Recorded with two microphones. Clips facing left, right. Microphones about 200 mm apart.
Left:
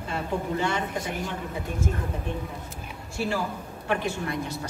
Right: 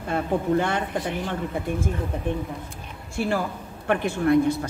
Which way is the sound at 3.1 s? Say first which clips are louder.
Right 3 dB; 55° right (ahead or behind).